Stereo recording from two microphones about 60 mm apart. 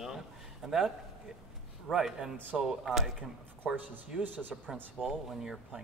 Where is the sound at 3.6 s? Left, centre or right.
Right.